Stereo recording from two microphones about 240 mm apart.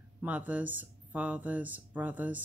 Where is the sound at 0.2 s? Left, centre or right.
Centre.